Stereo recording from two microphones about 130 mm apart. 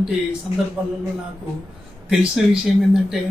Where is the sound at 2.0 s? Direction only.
5° right (ahead or behind).